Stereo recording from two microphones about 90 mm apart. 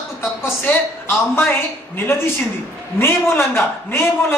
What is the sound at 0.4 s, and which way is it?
Speech, 25° left (ahead or behind).